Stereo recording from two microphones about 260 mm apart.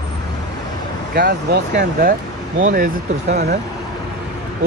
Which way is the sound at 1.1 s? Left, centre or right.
Right.